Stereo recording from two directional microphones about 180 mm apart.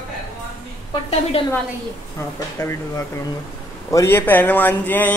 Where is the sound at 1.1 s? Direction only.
35° left (ahead or behind).